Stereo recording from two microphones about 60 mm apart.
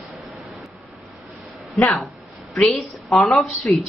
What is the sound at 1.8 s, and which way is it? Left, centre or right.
Speech, centre.